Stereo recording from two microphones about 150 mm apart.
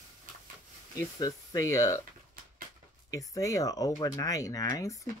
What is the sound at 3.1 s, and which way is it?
Speech, 25° left (ahead or behind).